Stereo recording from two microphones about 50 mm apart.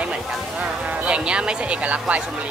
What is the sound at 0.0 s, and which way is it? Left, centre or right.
Music, right.